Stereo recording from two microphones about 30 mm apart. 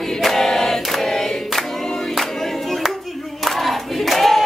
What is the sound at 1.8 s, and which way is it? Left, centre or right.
Crowd, left.